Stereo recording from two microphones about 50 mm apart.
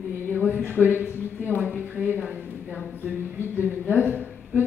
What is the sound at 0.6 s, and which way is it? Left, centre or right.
A woman's voice, right.